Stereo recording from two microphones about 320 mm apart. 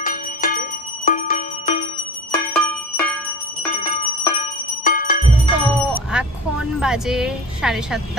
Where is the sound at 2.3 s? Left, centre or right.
Centre.